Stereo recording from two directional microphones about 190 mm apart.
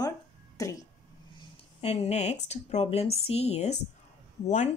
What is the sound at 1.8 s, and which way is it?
Speech, 35° left (ahead or behind).